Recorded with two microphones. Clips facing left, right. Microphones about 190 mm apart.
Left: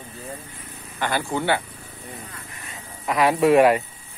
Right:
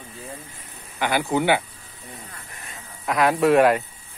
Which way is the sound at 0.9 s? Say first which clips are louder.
Right 3 dB; 10° right (ahead or behind).